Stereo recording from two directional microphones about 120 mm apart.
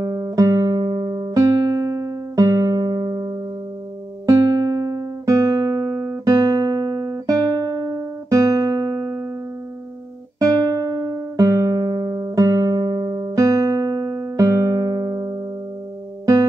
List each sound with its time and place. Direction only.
0.0 s music: 30° right (ahead or behind)
4.3 s music: 25° right (ahead or behind)
10.4 s music: 30° right (ahead or behind)